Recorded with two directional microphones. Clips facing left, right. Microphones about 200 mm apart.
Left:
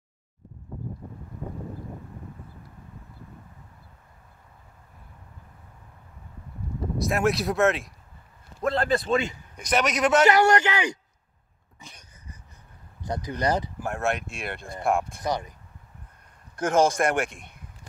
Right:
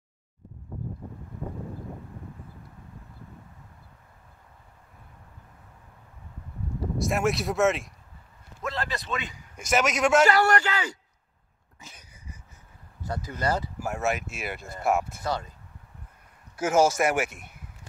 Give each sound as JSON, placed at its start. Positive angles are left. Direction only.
{"t": 7.0, "sound": "speech", "side_deg": 0}
{"t": 8.6, "sound": "a man's voice", "side_deg": 50}
{"t": 9.0, "sound": "speech", "side_deg": 30}
{"t": 9.6, "sound": "speech", "side_deg": 0}
{"t": 10.2, "sound": "a man's voice", "side_deg": 20}
{"t": 11.8, "sound": "a sound", "side_deg": -5}
{"t": 13.0, "sound": "speech", "side_deg": 20}
{"t": 13.8, "sound": "speech", "side_deg": 0}
{"t": 15.2, "sound": "speech", "side_deg": 15}
{"t": 16.5, "sound": "speech", "side_deg": -5}